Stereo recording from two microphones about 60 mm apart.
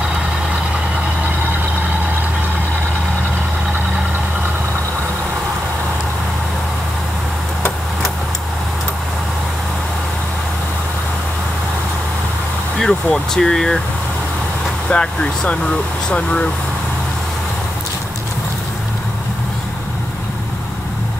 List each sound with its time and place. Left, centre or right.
12.7 s speech: centre
14.9 s speech: centre